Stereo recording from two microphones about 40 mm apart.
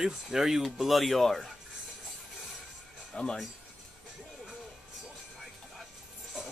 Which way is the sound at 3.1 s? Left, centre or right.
Left.